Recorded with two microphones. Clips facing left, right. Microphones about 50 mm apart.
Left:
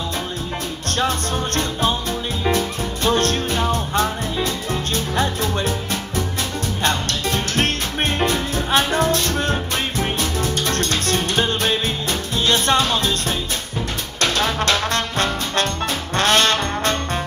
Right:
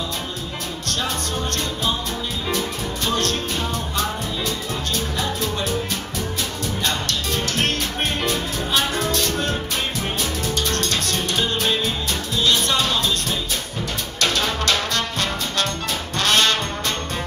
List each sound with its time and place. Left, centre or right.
0.8 s music: left
2.4 s music: left